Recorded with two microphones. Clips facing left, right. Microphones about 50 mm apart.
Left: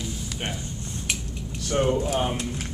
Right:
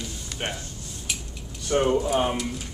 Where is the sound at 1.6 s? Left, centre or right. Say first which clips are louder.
Right 2 dB; centre.